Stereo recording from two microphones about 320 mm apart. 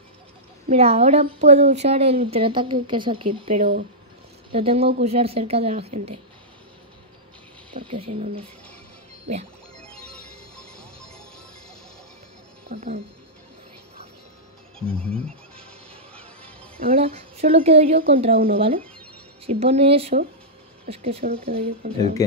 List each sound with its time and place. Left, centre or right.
0.7 s speech: centre
7.7 s speech: centre
9.8 s music: centre
12.6 s speech: right
14.9 s speech: centre
15.1 s music: centre
16.8 s speech: centre